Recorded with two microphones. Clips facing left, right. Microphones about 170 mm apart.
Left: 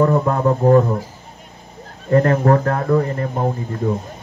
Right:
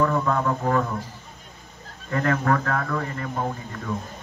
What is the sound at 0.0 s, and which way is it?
Speech, 35° left (ahead or behind).